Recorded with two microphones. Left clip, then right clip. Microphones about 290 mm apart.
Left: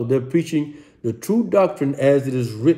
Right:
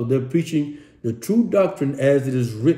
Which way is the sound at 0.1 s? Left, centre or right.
Centre.